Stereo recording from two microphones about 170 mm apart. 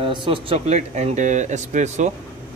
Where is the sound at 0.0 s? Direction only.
30° right (ahead or behind).